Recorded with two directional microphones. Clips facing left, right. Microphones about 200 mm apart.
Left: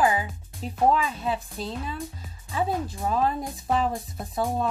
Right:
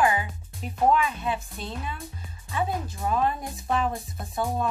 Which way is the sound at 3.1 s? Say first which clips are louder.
Even; 30° left (ahead or behind).